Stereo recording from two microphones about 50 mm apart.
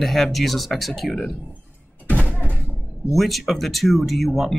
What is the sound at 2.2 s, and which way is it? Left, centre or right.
Thunk, left.